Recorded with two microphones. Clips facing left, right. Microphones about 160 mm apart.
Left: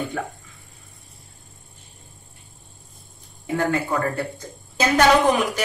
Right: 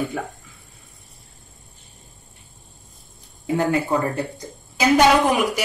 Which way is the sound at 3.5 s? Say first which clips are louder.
Right 2 dB; 20° right (ahead or behind).